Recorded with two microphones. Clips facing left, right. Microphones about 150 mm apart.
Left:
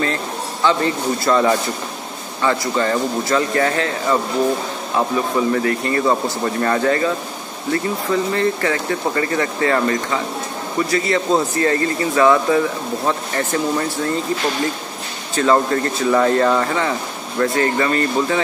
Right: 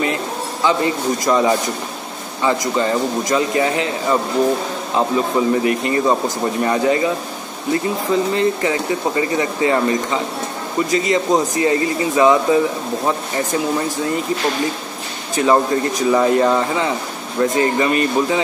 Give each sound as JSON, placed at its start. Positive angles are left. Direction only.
{"t": 0.7, "sound": "speech", "side_deg": -15}
{"t": 15.3, "sound": "speech", "side_deg": -15}